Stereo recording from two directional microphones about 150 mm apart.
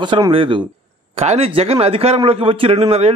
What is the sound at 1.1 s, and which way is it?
A man's voice, 45° right (ahead or behind).